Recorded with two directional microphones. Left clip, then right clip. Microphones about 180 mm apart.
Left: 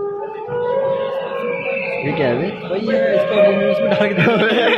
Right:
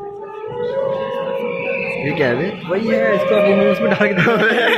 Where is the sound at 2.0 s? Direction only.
5° right (ahead or behind).